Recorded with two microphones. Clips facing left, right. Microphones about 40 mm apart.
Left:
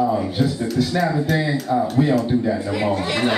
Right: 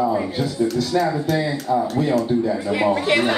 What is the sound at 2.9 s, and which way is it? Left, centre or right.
Speech, right.